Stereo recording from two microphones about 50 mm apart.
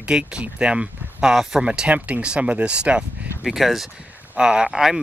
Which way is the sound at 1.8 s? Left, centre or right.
Right.